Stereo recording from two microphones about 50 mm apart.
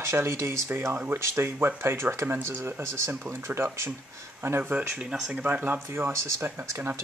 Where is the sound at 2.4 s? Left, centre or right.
Right.